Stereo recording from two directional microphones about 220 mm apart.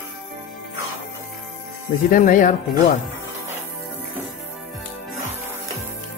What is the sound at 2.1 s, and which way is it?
Speech, 40° left (ahead or behind).